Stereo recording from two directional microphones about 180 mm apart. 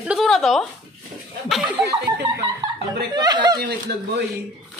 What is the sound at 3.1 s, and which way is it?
Speech, 20° right (ahead or behind).